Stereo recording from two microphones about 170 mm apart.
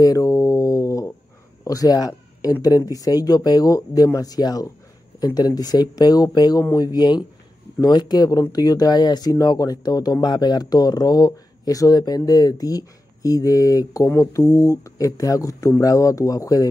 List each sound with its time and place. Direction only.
0.0 s guitar: 20° left (ahead or behind)
1.6 s cat: 20° left (ahead or behind)
2.6 s speech: 20° left (ahead or behind)